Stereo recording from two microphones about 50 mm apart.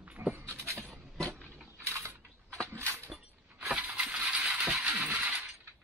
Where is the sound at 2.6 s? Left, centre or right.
Right.